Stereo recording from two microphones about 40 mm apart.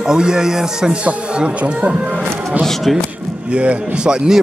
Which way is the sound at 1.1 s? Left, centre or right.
Right.